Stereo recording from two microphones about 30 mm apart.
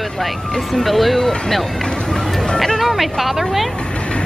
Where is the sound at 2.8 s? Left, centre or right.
Centre.